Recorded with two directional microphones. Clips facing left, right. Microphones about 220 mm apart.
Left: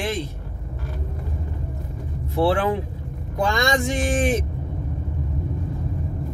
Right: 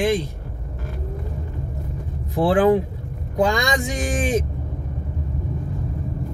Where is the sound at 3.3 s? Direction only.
15° right (ahead or behind).